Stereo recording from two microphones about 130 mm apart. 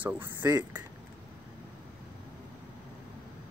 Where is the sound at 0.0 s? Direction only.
15° right (ahead or behind).